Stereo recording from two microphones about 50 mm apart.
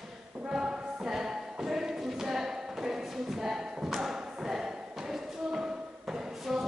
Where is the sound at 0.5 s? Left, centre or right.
Centre.